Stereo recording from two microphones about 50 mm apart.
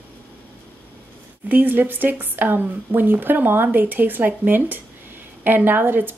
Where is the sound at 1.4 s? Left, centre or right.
Right.